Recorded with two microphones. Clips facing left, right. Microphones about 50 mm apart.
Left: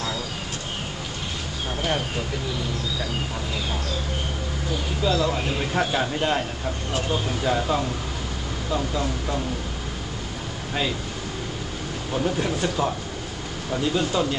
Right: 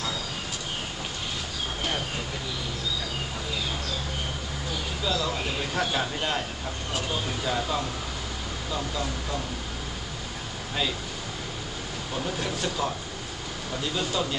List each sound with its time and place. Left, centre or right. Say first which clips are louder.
5.0 s speech: left 6 dB; centre
12.1 s speech: left 7 dB; centre